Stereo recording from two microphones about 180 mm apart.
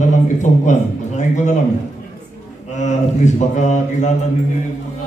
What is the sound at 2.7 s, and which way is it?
Speech, 40° left (ahead or behind).